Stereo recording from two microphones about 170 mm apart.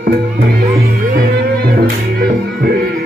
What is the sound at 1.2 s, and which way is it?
Music, 65° right (ahead or behind).